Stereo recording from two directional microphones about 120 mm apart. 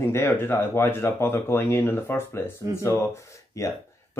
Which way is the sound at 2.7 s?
25° right (ahead or behind).